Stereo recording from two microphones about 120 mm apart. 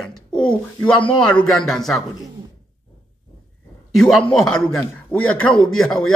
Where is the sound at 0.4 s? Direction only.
5° left (ahead or behind).